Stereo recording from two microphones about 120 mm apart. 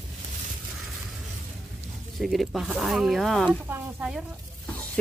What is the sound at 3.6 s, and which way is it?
Speech, 15° right (ahead or behind).